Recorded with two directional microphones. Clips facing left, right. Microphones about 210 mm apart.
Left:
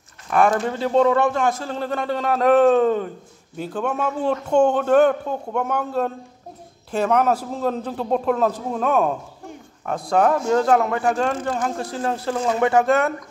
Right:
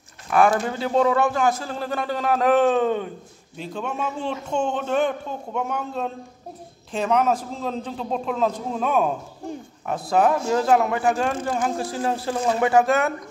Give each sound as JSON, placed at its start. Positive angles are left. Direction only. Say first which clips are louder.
{"t": 0.3, "sound": "a man's voice", "louder": "even", "side_deg": -5}
{"t": 4.6, "sound": "speech", "louder": "left 6 dB", "side_deg": 60}
{"t": 6.9, "sound": "a man's voice", "louder": "left 2 dB", "side_deg": 5}